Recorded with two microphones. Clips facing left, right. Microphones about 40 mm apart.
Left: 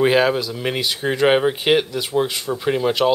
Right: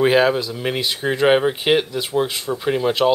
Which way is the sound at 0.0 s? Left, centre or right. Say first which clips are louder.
Right 1 dB; centre.